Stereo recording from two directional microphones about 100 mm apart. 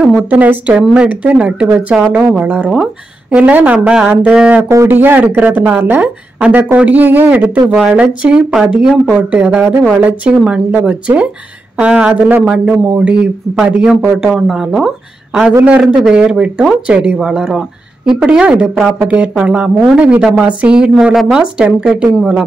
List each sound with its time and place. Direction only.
0.3 s a woman's voice: 15° right (ahead or behind)